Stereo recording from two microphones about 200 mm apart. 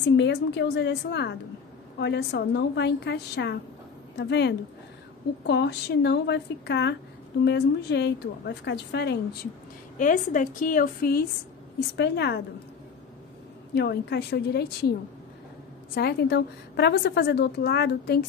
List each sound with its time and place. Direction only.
0.0 s a woman's voice: 60° left (ahead or behind)
9.9 s a woman's voice: 40° left (ahead or behind); by 12.4 s 55° left (ahead or behind)
13.7 s a woman's voice: 55° left (ahead or behind)